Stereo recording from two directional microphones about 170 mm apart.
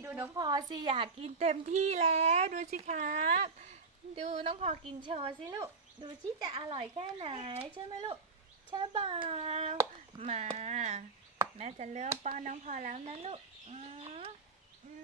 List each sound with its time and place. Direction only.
0.0 s a sound: 15° right (ahead or behind)
0.4 s a child's voice: 25° right (ahead or behind)
5.5 s a child's voice: 25° right (ahead or behind)